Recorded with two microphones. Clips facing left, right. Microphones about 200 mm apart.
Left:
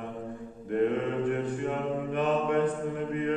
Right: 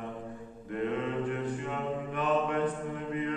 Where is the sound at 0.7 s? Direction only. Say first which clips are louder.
Left 5 dB; 50° left (ahead or behind).